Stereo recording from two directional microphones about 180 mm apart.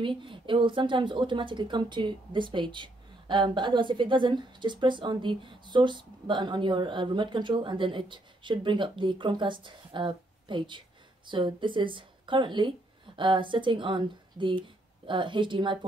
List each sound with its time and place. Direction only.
0.0 s a woman's voice: 30° right (ahead or behind)